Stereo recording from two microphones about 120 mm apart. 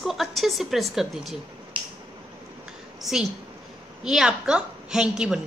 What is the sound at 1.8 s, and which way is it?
Finger snapping, 50° right (ahead or behind).